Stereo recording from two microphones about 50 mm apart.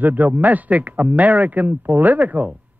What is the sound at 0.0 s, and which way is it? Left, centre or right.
A man's voice, right.